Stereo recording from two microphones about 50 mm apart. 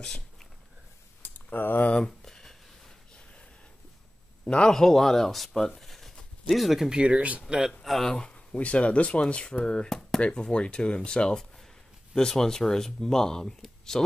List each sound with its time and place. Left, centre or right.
0.0 s a sound: centre
1.2 s speech: left
2.2 s a sound: centre
4.5 s speech: centre
6.9 s speech: right
7.8 s speech: centre
8.1 s speech: centre
9.8 s a sound: centre
10.2 s speech: centre